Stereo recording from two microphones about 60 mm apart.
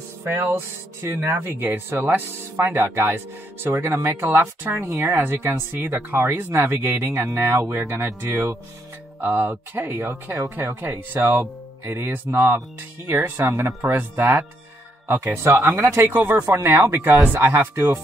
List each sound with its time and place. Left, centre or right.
0.2 s speech: right
4.9 s speech: right
5.2 s speech: right
9.2 s speech: right
12.5 s speech: right
13.7 s speech: right
16.4 s speech: right